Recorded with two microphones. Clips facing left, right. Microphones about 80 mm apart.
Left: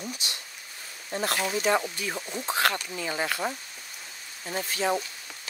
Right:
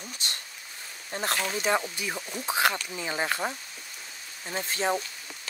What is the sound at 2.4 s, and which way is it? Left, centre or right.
Speech, centre.